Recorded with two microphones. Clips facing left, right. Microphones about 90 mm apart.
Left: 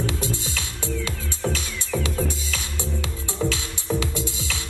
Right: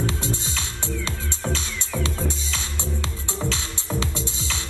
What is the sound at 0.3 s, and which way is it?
Music, 20° right (ahead or behind).